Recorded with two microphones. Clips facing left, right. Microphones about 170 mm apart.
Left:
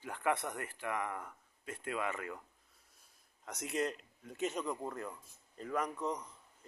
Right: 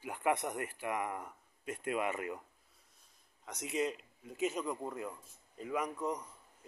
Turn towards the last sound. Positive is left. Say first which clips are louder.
# even
turn(degrees=-10)  # may be behind; listen again after turning